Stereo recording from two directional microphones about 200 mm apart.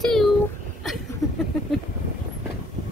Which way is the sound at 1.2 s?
Centre (ahead or behind).